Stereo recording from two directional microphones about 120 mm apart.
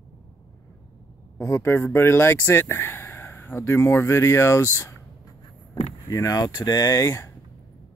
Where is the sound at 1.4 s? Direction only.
20° left (ahead or behind).